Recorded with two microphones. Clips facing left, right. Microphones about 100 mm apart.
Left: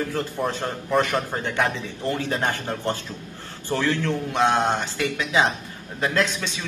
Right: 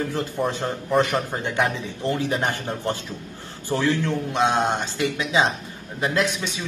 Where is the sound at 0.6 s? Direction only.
20° right (ahead or behind).